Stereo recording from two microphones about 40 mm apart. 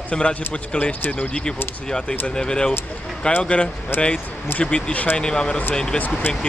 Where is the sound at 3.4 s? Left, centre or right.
Left.